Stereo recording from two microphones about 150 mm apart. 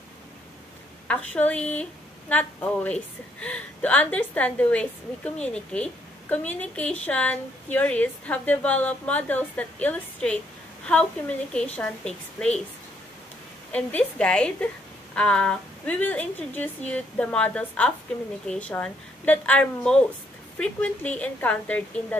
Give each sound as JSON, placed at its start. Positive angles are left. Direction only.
{"t": 1.0, "sound": "a woman's voice", "side_deg": 10}
{"t": 13.7, "sound": "a woman's voice", "side_deg": 10}